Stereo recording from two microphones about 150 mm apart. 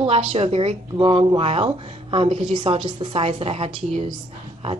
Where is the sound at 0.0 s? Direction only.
40° right (ahead or behind).